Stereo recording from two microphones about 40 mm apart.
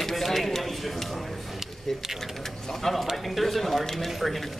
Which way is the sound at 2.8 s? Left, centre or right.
Centre.